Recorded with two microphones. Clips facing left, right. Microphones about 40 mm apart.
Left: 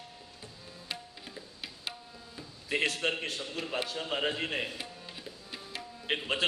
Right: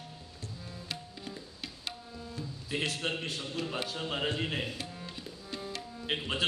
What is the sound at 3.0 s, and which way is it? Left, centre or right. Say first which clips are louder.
Speech: left 3 dB; left.